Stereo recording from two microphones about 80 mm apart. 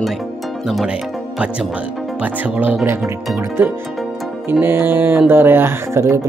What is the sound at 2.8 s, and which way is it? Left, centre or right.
Speech, right.